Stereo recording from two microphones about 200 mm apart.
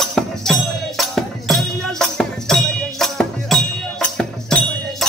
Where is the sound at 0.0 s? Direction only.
Centre (ahead or behind).